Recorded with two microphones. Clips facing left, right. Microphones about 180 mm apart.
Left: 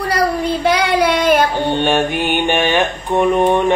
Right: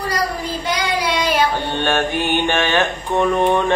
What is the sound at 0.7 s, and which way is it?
Child singing, 60° left (ahead or behind).